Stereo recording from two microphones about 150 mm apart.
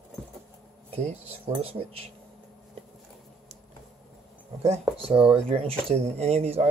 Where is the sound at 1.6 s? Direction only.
40° right (ahead or behind).